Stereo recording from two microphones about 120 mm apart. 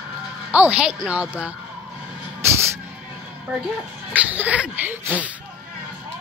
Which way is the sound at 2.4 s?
20° right (ahead or behind).